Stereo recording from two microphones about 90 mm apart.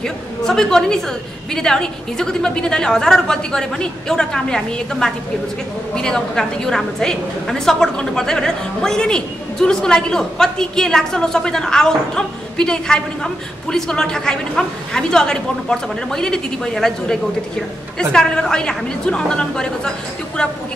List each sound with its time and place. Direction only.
0.0 s a woman's voice: 5° left (ahead or behind)